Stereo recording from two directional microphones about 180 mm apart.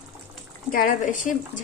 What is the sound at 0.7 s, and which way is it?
Speech, 50° left (ahead or behind).